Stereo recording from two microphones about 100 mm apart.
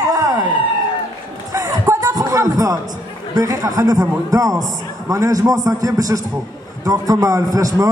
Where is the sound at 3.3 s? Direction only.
35° right (ahead or behind).